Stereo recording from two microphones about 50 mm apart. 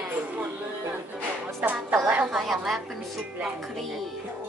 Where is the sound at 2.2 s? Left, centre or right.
Centre.